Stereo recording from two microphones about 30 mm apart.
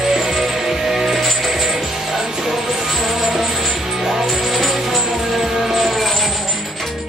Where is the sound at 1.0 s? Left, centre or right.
Centre.